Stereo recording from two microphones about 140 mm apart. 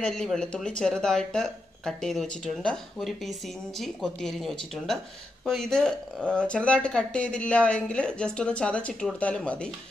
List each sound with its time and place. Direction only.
0.0 s speech: 5° left (ahead or behind)